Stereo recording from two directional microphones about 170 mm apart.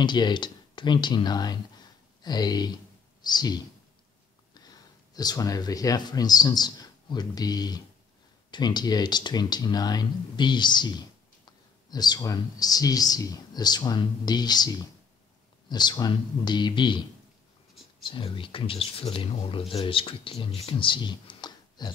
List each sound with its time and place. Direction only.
0.0 s speech: 25° left (ahead or behind)
4.6 s speech: 25° left (ahead or behind)
18.0 s speech: 30° left (ahead or behind)